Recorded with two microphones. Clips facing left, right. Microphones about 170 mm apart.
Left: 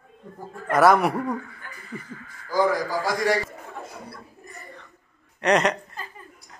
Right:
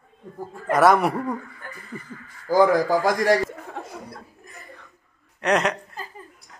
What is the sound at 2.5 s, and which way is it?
Speech, 50° right (ahead or behind).